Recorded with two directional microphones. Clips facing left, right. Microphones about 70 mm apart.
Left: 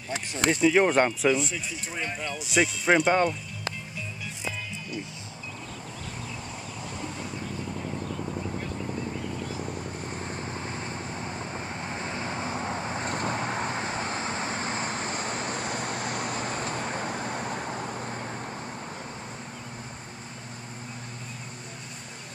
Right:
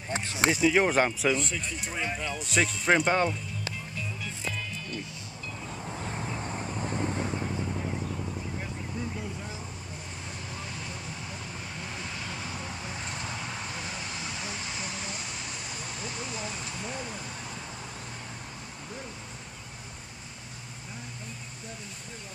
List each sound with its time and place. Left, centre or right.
0.1 s a sound: right
0.5 s speech: centre
3.9 s music: centre
5.9 s vehicle: right
7.7 s vehicle: centre
8.2 s vehicle: centre
10.0 s vehicle: left